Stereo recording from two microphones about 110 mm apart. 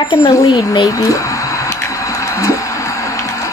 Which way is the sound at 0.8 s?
30° left (ahead or behind).